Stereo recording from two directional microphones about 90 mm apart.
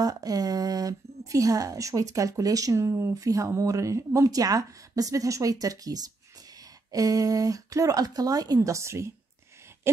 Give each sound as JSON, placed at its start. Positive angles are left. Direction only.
{"t": 0.0, "sound": "a woman's voice", "side_deg": -45}